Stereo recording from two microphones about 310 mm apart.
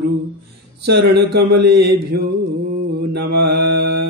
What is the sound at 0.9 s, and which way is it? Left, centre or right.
Speech, right.